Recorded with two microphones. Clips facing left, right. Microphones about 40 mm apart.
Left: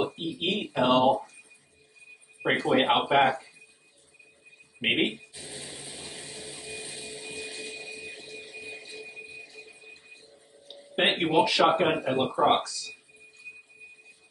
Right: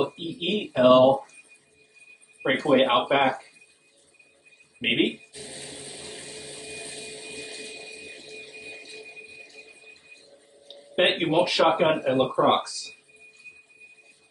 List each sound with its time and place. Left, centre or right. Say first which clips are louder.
0.1 s speech: right 2 dB; centre
2.6 s speech: right 4 dB; centre
4.8 s a sound: right 2 dB; centre
10.7 s speech: right 3 dB; centre